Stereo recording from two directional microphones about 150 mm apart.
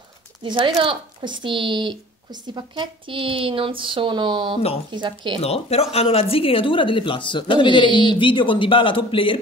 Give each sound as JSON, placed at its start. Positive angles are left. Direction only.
{"t": 0.4, "sound": "speech", "side_deg": -30}
{"t": 5.4, "sound": "speech", "side_deg": 45}